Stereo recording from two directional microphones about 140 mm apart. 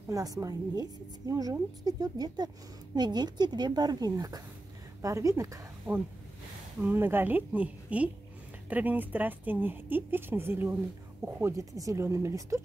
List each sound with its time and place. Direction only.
0.1 s a woman's voice: 25° right (ahead or behind)
5.9 s speech: centre (ahead or behind)
6.8 s a woman's voice: 15° right (ahead or behind)